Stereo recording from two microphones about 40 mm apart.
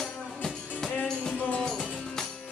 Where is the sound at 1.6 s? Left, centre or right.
Centre.